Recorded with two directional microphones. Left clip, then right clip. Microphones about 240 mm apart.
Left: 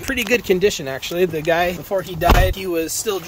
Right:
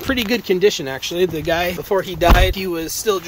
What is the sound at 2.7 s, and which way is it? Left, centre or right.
Speech, centre.